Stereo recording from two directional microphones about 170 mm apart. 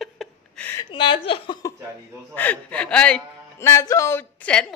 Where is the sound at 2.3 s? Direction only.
10° left (ahead or behind).